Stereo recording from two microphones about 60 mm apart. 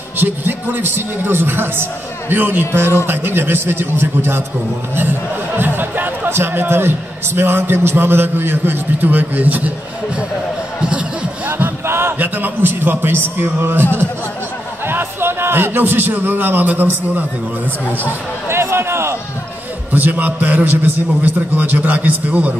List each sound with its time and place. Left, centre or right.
0.2 s a man's voice: right
5.6 s a man's voice: right
10.8 s a sound: centre
11.5 s a man's voice: right
14.9 s a man's voice: right
18.5 s a sound: right
19.9 s a man's voice: right